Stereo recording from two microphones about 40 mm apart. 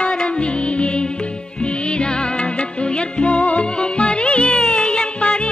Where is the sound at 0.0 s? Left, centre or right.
Left.